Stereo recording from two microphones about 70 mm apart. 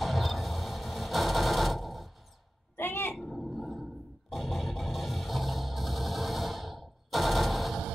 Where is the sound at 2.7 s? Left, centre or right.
Left.